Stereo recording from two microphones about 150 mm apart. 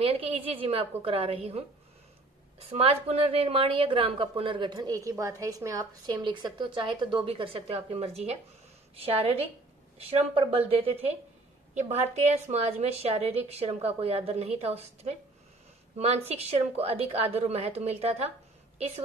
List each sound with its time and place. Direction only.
0.0 s a woman's voice: 40° right (ahead or behind)
2.7 s a woman's voice: 45° right (ahead or behind)